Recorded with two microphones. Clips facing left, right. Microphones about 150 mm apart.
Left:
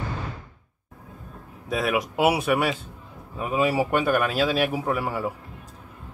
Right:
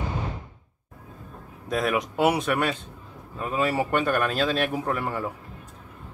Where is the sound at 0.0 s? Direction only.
20° right (ahead or behind).